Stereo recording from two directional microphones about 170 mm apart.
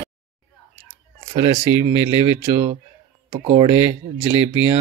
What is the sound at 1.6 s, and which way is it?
Speech, 25° left (ahead or behind).